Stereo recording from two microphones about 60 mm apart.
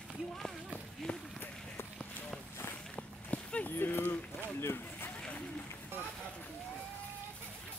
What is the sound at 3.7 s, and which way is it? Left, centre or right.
Speech, left.